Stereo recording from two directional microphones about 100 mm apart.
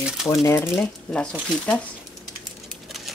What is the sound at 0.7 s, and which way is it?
Speech, 10° left (ahead or behind).